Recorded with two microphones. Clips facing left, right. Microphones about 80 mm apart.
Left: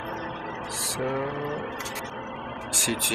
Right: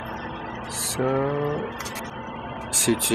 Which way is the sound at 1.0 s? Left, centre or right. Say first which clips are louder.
Right 6 dB; right.